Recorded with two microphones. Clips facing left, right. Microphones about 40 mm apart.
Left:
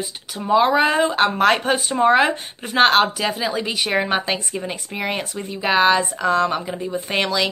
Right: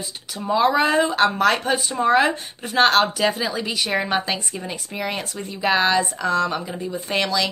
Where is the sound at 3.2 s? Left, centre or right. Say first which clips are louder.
Right 2 dB; centre.